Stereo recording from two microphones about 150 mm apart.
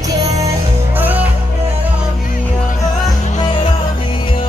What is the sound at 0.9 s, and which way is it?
Music, 10° right (ahead or behind).